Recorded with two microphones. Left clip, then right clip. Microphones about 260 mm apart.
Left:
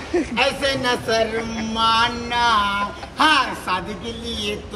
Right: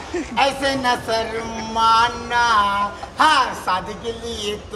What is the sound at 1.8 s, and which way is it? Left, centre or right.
A man's voice, centre.